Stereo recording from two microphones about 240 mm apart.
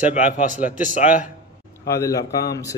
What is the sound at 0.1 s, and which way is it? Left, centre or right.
Speech, left.